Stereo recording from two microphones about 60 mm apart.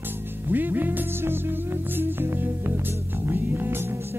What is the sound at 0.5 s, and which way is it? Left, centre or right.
Music, right.